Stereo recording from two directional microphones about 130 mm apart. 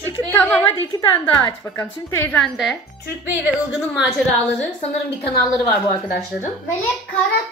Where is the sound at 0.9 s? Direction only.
40° left (ahead or behind).